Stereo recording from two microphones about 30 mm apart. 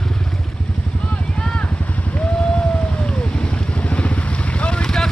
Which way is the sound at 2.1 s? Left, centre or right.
Left.